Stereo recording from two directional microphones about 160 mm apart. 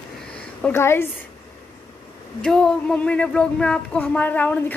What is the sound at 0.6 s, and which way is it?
Speech, 15° left (ahead or behind).